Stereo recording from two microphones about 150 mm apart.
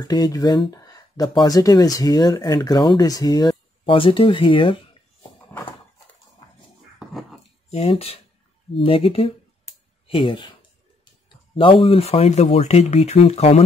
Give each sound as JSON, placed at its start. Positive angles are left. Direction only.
{"t": 0.0, "sound": "speech", "side_deg": 25}
{"t": 7.7, "sound": "speech", "side_deg": 40}
{"t": 11.5, "sound": "speech", "side_deg": 35}